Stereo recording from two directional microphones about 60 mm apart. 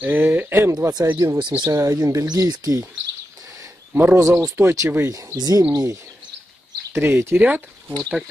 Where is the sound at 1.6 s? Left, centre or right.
Right.